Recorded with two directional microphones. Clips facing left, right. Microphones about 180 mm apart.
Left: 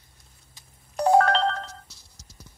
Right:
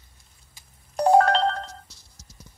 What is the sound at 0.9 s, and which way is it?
Ringtone, 35° right (ahead or behind).